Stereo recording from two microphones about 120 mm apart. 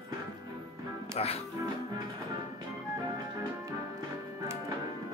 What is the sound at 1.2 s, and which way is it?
Speech, 60° left (ahead or behind).